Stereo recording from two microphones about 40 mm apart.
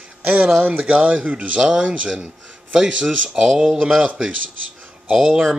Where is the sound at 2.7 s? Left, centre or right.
Centre.